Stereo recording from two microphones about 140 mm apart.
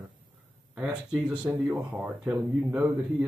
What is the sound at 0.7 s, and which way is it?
Speech, 5° right (ahead or behind).